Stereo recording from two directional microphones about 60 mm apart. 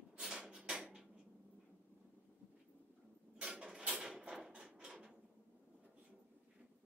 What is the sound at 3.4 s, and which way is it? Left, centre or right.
Mechanisms, centre.